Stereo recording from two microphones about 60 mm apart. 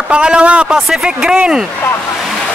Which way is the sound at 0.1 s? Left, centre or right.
Centre.